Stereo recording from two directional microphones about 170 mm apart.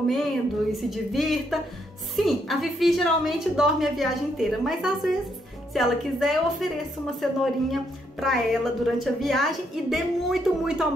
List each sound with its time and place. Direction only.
0.0 s a woman's voice: centre (ahead or behind)
7.7 s a woman's voice: centre (ahead or behind)